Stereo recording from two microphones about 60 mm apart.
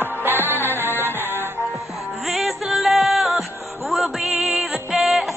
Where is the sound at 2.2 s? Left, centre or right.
Centre.